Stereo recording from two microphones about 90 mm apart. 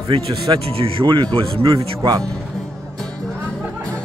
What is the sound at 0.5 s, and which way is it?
Speech, 85° right.